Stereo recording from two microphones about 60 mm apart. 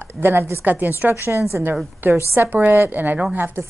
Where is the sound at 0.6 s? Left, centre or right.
Right.